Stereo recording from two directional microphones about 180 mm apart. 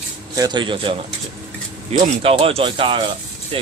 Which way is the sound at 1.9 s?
30° right (ahead or behind).